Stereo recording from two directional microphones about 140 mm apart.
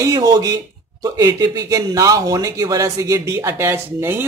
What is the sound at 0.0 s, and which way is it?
Speech, 25° right (ahead or behind).